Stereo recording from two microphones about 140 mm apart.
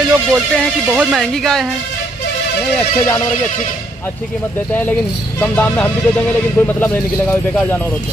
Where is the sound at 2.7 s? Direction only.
20° left (ahead or behind).